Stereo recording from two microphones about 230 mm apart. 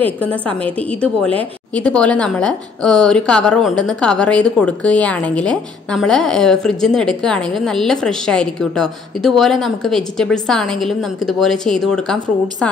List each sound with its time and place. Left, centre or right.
0.0 s a woman's voice: centre
1.8 s a woman's voice: centre